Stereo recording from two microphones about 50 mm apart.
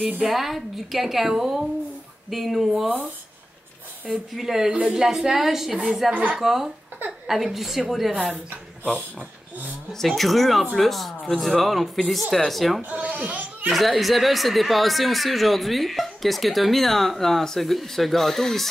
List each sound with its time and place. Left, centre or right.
0.2 s speech: centre
4.4 s a woman's voice: centre
9.9 s speech: centre
12.9 s a child's voice: right
13.7 s speech: centre